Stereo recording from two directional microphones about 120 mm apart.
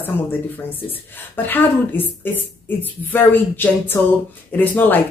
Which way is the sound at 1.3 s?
15° left (ahead or behind).